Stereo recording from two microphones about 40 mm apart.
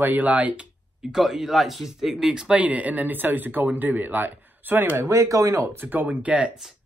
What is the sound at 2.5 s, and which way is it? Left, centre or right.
Speech, right.